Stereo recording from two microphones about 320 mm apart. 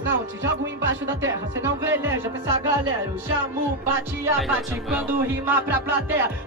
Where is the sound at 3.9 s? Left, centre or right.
Centre.